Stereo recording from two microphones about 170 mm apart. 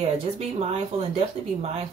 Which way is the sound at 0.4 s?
35° right (ahead or behind).